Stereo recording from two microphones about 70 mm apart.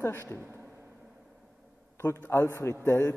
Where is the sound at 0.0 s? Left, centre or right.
Left.